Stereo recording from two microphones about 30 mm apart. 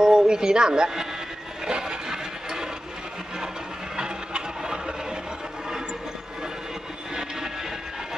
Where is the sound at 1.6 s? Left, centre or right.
Right.